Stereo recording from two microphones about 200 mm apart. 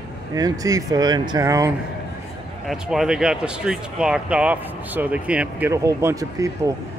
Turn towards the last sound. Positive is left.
turn(degrees=-15)  # may be behind; listen again after turning